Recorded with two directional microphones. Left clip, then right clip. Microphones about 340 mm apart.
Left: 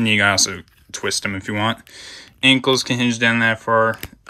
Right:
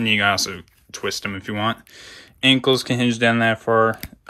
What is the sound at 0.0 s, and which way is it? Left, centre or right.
Speech, centre.